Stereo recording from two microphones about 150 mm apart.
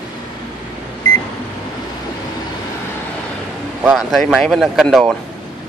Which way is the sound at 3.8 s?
Centre (ahead or behind).